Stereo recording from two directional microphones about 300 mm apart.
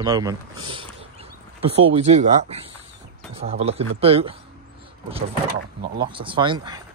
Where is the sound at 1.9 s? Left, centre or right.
Right.